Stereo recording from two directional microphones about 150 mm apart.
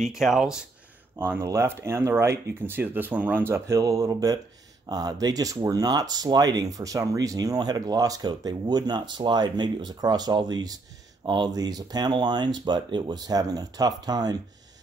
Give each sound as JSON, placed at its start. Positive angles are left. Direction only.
{"t": 0.0, "sound": "speech", "side_deg": 0}
{"t": 1.1, "sound": "speech", "side_deg": -15}